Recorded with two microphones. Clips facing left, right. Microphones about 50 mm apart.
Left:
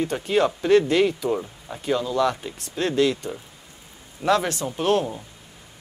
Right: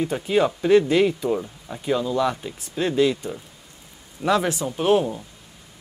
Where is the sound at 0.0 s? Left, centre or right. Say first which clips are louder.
Right 1 dB; centre.